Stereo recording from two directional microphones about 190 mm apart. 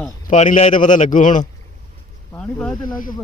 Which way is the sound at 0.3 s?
35° left (ahead or behind).